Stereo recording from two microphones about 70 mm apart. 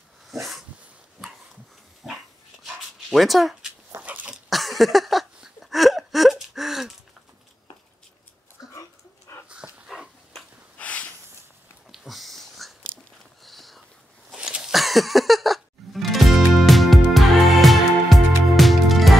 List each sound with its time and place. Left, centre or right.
0.3 s dog: centre
2.0 s dog: centre
4.0 s dog: right
4.5 s a sound: centre
8.6 s dog: left
9.8 s dog: centre
10.8 s a sound: centre
11.9 s a sound: centre
14.3 s music: centre